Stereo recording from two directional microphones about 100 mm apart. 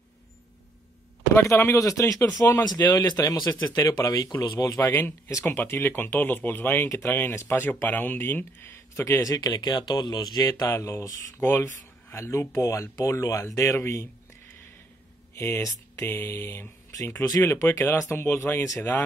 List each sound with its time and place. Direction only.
1.3 s speech: 25° left (ahead or behind)
2.6 s speech: 45° left (ahead or behind)
5.4 s speech: 20° left (ahead or behind)
15.3 s speech: 25° left (ahead or behind)
17.2 s speech: 35° left (ahead or behind)
17.5 s speech: 25° left (ahead or behind)